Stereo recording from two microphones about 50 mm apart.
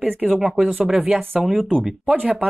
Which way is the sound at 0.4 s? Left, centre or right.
Centre.